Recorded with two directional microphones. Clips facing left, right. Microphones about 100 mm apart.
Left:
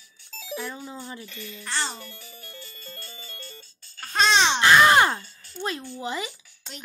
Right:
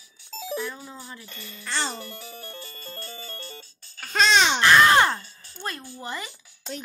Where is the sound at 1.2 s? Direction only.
45° right (ahead or behind).